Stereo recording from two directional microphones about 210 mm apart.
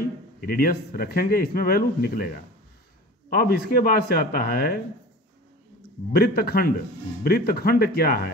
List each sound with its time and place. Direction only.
0.4 s speech: 45° left (ahead or behind)
6.1 s speech: 45° left (ahead or behind)